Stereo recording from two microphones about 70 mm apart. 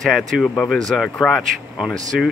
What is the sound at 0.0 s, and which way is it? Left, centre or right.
Speech, centre.